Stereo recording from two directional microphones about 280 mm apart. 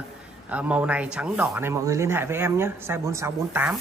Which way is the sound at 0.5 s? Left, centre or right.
Centre.